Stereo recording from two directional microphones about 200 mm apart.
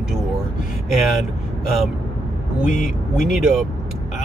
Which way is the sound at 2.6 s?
40° left (ahead or behind).